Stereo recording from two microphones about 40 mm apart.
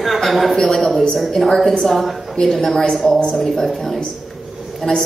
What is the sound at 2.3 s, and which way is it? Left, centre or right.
A woman's voice, centre.